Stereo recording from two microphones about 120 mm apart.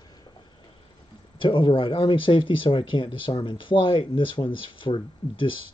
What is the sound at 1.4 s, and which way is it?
Speech, 45° left (ahead or behind).